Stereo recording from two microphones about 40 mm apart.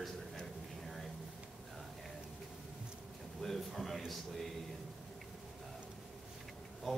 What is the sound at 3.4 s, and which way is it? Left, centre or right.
A man's voice, centre.